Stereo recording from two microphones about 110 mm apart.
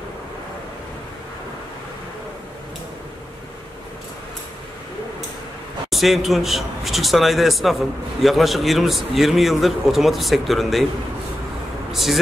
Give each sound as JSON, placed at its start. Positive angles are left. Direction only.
{"t": 5.9, "sound": "a man's voice", "side_deg": 0}
{"t": 11.9, "sound": "speech", "side_deg": 0}